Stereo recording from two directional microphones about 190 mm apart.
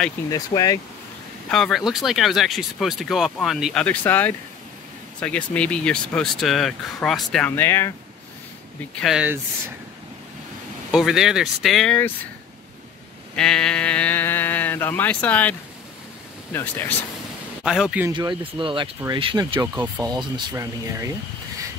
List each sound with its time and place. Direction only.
0.3 s speech: 20° left (ahead or behind)
1.5 s speech: centre (ahead or behind)
9.0 s speech: 5° right (ahead or behind)
10.9 s speech: centre (ahead or behind)
13.4 s speech: 5° left (ahead or behind)
16.5 s speech: 10° left (ahead or behind)
17.6 s speech: 5° right (ahead or behind)
18.1 s speech: 25° right (ahead or behind)